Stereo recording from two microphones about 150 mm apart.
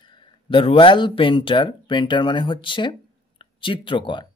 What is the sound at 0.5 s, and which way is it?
Speech, 35° left (ahead or behind).